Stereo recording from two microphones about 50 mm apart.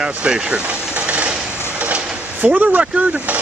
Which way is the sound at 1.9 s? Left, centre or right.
Right.